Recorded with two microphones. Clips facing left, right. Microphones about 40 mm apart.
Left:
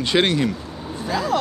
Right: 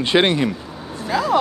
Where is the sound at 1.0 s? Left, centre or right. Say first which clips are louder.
Right 3 dB; centre.